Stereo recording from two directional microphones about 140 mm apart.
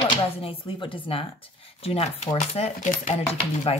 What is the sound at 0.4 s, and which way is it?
Speech, 40° left (ahead or behind).